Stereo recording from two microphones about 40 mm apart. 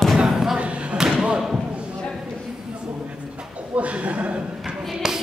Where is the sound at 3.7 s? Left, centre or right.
Right.